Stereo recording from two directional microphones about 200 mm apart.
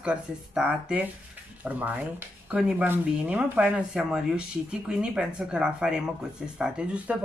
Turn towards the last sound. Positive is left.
turn(degrees=-5)  # may be behind; listen again after turning